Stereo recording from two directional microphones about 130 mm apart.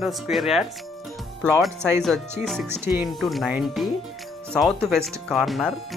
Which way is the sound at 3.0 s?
Centre (ahead or behind).